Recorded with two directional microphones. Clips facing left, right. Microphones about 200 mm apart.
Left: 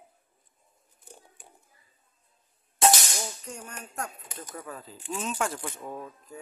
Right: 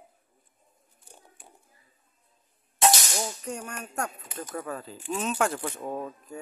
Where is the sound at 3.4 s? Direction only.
70° right (ahead or behind).